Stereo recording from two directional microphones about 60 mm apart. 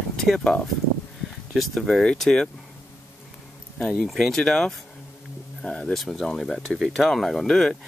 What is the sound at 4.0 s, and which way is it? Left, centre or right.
Speech, centre.